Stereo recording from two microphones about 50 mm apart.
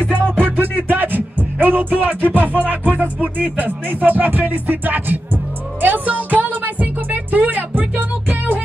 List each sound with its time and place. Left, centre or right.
0.4 s music: right